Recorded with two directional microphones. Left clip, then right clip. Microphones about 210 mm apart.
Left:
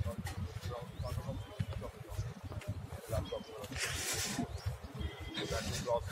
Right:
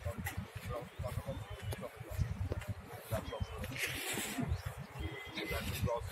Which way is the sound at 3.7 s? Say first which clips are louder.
Even; 20° left (ahead or behind).